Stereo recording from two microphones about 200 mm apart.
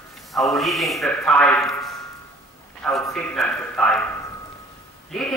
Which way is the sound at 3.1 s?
5° left (ahead or behind).